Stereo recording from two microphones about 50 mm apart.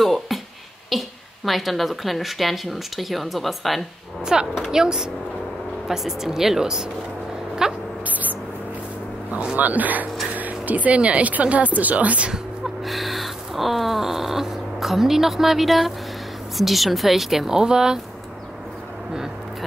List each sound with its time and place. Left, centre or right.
0.0 s music: centre
0.8 s a woman's voice: centre
4.2 s speech: centre
8.1 s a sound: right
9.3 s speech: right
9.6 s speech: right
12.8 s a sound: centre
16.5 s a woman's voice: centre